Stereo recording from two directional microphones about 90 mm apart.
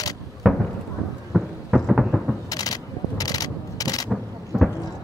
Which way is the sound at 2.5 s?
45° left (ahead or behind).